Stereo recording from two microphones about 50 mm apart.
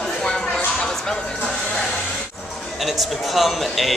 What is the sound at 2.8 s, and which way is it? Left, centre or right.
Speech, centre.